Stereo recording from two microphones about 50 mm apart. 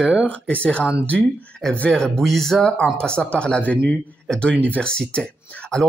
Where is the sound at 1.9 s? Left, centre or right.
Centre.